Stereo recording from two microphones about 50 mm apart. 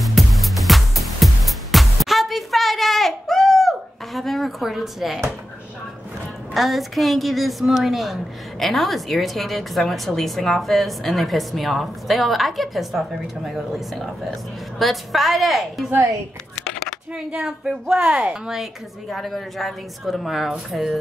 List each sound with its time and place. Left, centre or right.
0.0 s music: centre
6.5 s a woman's voice: centre
17.1 s a woman's voice: centre
18.5 s a woman's voice: centre